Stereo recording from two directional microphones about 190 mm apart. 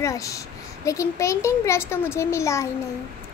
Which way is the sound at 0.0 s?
15° left (ahead or behind).